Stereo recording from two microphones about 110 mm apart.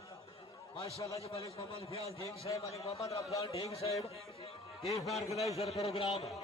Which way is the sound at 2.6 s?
65° left (ahead or behind).